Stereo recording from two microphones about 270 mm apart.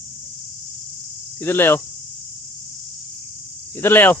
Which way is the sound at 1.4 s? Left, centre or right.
Centre.